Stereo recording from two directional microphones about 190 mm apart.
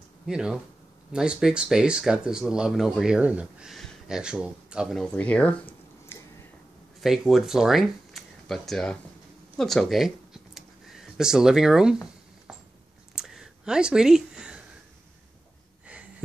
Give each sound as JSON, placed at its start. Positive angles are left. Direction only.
{"t": 0.3, "sound": "speech", "side_deg": -5}
{"t": 7.0, "sound": "speech", "side_deg": 0}
{"t": 9.6, "sound": "a sound", "side_deg": 0}